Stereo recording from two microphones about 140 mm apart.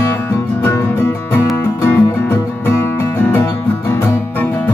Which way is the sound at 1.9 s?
15° left (ahead or behind).